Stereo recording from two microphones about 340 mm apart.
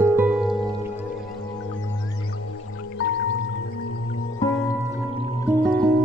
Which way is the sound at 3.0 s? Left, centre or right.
Left.